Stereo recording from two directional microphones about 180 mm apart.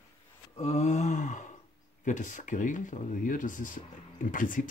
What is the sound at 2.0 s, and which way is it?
Speech, 45° left (ahead or behind).